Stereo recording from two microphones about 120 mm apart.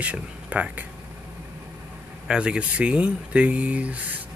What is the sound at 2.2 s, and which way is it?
Speech, 10° right (ahead or behind).